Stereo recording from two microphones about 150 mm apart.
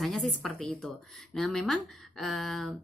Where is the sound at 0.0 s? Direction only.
Centre (ahead or behind).